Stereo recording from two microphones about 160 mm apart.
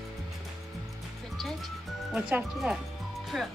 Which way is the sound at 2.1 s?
5° right (ahead or behind).